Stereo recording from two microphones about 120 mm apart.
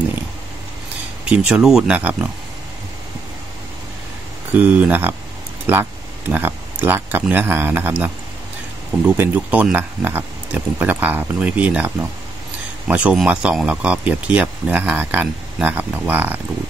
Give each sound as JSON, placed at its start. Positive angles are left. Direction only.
{"t": 1.2, "sound": "speech", "side_deg": -5}
{"t": 4.6, "sound": "speech", "side_deg": -10}